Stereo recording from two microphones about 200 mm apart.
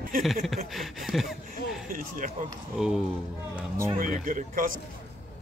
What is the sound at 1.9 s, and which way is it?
Speech, 45° right (ahead or behind).